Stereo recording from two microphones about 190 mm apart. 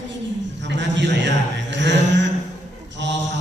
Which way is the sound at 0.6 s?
70° right (ahead or behind).